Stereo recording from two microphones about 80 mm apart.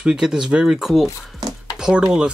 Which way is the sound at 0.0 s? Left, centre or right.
Centre.